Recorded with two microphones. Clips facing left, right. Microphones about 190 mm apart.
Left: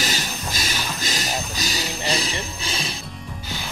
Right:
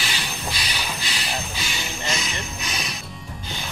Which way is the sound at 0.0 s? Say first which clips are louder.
Left 3 dB; 40° left (ahead or behind).